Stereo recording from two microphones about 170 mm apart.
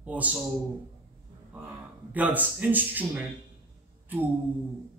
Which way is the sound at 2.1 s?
10° right (ahead or behind).